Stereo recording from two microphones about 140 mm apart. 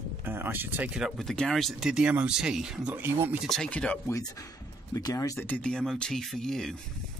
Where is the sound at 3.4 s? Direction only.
5° left (ahead or behind).